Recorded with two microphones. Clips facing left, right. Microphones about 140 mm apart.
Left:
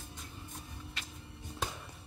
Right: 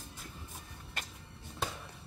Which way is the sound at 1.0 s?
50° right (ahead or behind).